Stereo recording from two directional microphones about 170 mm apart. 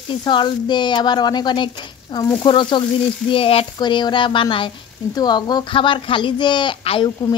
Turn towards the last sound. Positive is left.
turn(degrees=30)  # may be behind; listen again after turning